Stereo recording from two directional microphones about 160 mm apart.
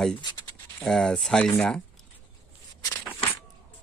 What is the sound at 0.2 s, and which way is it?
Speech, 25° left (ahead or behind).